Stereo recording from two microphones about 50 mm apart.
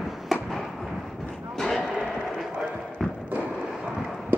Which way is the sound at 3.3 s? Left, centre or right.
Right.